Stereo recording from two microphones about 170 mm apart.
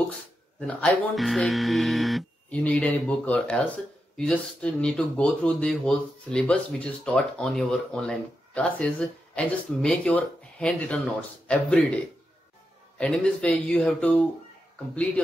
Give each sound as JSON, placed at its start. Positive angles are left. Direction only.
{"t": 0.6, "sound": "speech", "side_deg": 5}
{"t": 12.9, "sound": "speech", "side_deg": 5}